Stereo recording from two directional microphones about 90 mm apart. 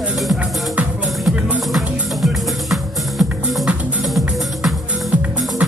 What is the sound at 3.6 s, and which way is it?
Music, 15° right (ahead or behind).